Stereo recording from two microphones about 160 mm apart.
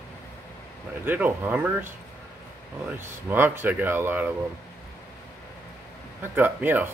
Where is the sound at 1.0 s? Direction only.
10° right (ahead or behind).